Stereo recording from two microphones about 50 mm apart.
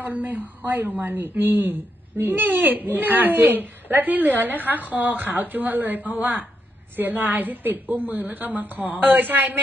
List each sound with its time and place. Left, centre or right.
0.0 s a man's voice: right